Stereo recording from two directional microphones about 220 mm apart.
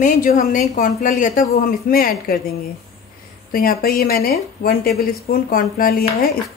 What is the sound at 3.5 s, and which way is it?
A woman's voice, 40° left (ahead or behind).